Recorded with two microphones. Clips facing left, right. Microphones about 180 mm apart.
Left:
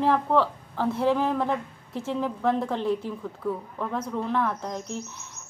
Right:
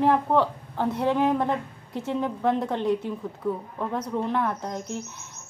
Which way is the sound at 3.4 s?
20° right (ahead or behind).